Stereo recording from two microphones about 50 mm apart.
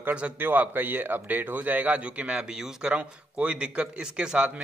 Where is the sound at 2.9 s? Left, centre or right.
Right.